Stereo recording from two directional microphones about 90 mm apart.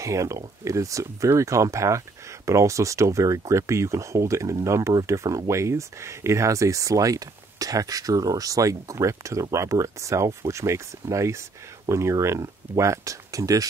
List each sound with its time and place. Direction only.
0.0 s speech: 35° right (ahead or behind)